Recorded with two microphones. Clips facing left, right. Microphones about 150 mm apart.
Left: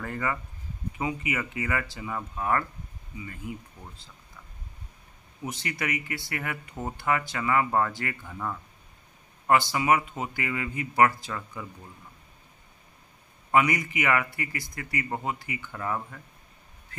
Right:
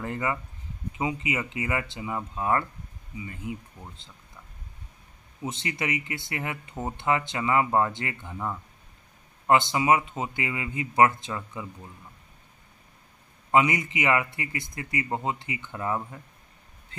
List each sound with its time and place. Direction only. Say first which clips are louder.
0.0 s speech: right 1 dB; 20° right (ahead or behind)
5.4 s speech: right 1 dB; 25° right (ahead or behind)
13.5 s speech: right 1 dB; 20° right (ahead or behind)